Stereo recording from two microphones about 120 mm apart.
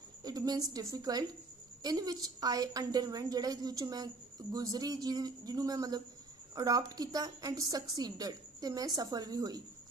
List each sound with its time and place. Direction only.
0.2 s a woman's voice: 30° right (ahead or behind)